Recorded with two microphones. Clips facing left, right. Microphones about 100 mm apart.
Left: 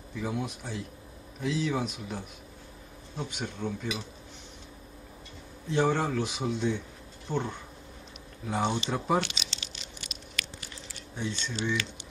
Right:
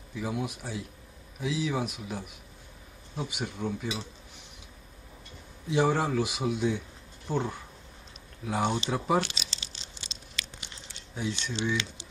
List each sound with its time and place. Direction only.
0.1 s a man's voice: 5° right (ahead or behind)
5.7 s a man's voice: 10° right (ahead or behind)
9.2 s crumpling: 35° right (ahead or behind)
10.6 s a sound: 20° right (ahead or behind)
11.1 s speech: 5° right (ahead or behind)